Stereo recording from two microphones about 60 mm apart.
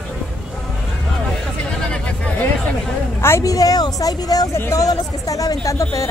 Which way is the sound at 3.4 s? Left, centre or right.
Left.